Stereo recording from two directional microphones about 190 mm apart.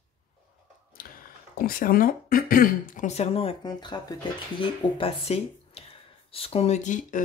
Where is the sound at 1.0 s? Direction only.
50° left (ahead or behind).